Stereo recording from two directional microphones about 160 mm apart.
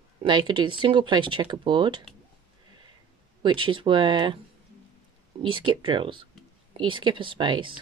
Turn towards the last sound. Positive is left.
turn(degrees=-30)  # may be behind; listen again after turning